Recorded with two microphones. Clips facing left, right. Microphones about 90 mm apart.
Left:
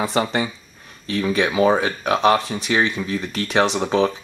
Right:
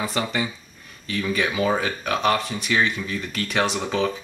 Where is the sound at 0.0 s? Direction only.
30° left (ahead or behind).